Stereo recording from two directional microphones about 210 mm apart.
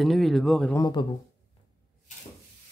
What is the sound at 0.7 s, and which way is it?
Speech, 20° left (ahead or behind).